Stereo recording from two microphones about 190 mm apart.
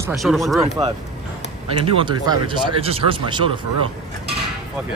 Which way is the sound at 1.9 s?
25° right (ahead or behind).